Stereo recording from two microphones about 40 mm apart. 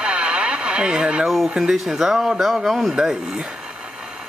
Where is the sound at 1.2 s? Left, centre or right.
Centre.